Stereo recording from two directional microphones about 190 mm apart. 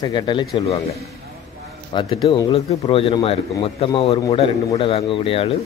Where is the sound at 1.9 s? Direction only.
25° left (ahead or behind).